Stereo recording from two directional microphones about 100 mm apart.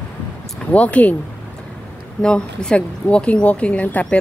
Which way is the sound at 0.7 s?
15° left (ahead or behind).